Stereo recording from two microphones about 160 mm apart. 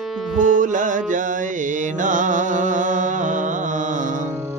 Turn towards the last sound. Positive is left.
turn(degrees=-55)  # may be behind; listen again after turning